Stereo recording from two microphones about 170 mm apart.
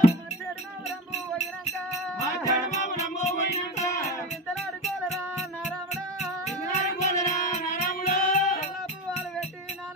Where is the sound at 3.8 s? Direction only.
20° left (ahead or behind).